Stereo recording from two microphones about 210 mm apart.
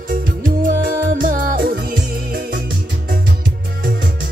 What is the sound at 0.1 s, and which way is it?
Music, 40° right (ahead or behind).